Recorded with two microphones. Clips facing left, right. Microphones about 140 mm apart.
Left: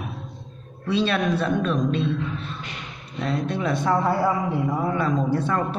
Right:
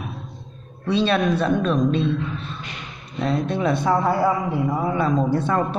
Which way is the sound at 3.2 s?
30° right (ahead or behind).